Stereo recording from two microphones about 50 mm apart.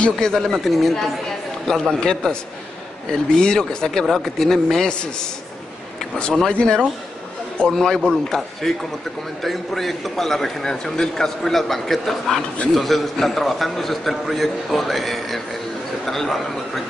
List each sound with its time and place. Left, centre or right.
0.0 s a man's voice: centre
0.5 s a man's voice: centre
1.7 s a man's voice: centre
6.6 s speech: centre
7.7 s a man's voice: centre